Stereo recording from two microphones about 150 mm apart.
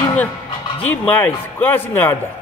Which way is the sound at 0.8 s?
10° left (ahead or behind).